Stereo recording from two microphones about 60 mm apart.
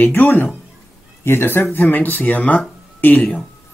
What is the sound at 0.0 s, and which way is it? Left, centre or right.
Speech, left.